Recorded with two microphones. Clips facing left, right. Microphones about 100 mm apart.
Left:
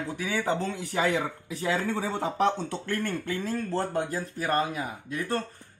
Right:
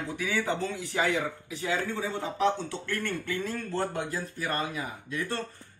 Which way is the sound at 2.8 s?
40° left (ahead or behind).